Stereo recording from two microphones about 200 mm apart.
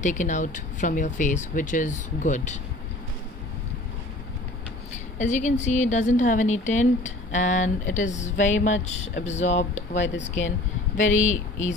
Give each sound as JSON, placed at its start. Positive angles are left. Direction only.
{"t": 0.0, "sound": "a woman's voice", "side_deg": 40}
{"t": 5.2, "sound": "a woman's voice", "side_deg": 40}
{"t": 8.4, "sound": "a sound", "side_deg": 70}
{"t": 8.8, "sound": "a woman's voice", "side_deg": 35}
{"t": 9.9, "sound": "speech", "side_deg": 65}
{"t": 11.1, "sound": "a woman's voice", "side_deg": 40}